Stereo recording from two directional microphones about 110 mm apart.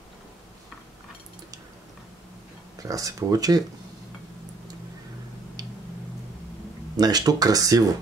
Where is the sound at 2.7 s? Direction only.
30° right (ahead or behind).